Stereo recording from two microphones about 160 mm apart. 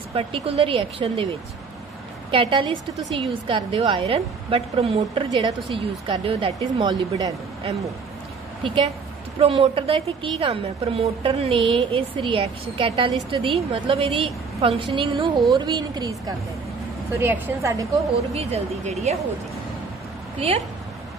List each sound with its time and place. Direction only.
0.1 s a woman's voice: 35° right (ahead or behind)
2.3 s a woman's voice: 30° right (ahead or behind)
9.4 s a woman's voice: 35° right (ahead or behind)
17.2 s a woman's voice: 15° right (ahead or behind)
18.3 s speech: 40° right (ahead or behind)
20.3 s a woman's voice: 35° right (ahead or behind)